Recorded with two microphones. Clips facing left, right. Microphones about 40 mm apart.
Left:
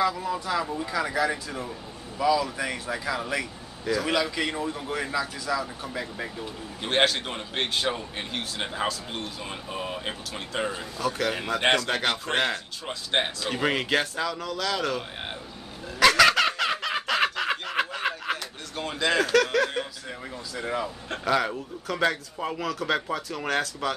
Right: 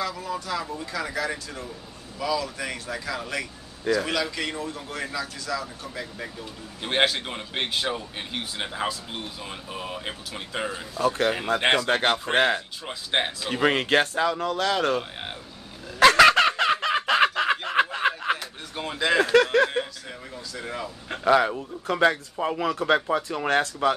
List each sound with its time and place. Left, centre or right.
0.0 s a man's voice: centre
6.8 s a man's voice: centre
11.0 s speech: right
11.6 s speech: centre
11.9 s speech: right
12.3 s speech: centre
12.8 s a man's voice: centre
13.5 s speech: centre
13.7 s speech: right
16.0 s fowl: right
17.9 s snicker: centre
19.1 s speech: right
20.5 s a man's voice: centre
21.1 s speech: centre